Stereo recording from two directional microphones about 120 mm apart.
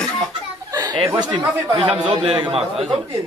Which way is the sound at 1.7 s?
45° right (ahead or behind).